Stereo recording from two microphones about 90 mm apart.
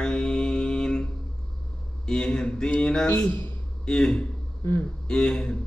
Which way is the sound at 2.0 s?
10° left (ahead or behind).